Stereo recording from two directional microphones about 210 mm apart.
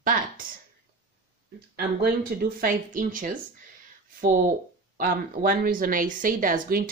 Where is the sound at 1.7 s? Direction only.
50° right (ahead or behind).